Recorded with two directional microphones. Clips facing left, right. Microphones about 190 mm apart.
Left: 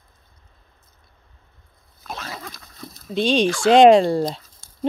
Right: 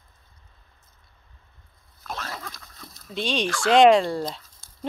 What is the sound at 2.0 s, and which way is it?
Dog, 10° left (ahead or behind).